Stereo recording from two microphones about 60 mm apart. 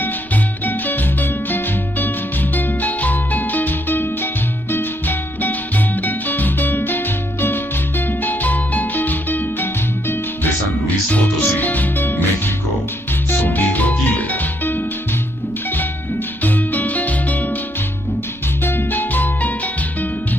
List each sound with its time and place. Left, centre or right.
0.0 s music: left
16.4 s music: left
18.6 s music: left